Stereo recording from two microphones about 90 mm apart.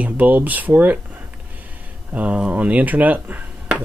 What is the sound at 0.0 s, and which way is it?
Speech, 20° right (ahead or behind).